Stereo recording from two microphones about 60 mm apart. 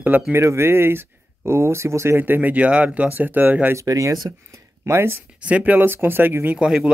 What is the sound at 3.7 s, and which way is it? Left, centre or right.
Speech, right.